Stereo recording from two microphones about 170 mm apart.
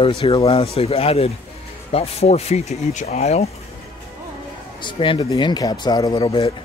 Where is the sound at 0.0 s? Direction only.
35° left (ahead or behind).